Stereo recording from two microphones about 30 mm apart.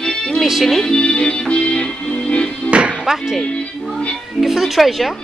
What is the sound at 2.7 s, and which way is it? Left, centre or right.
Music, right.